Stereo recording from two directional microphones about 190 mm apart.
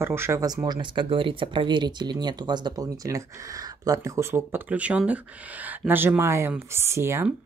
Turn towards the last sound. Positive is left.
turn(degrees=-15)  # may be behind; listen again after turning